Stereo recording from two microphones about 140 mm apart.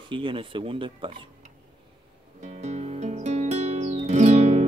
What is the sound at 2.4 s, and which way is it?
Music, 55° right (ahead or behind).